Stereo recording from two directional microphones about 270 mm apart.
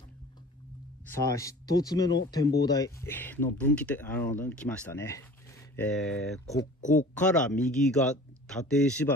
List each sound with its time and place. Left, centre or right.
1.0 s speech: centre
6.8 s speech: left
7.2 s speech: centre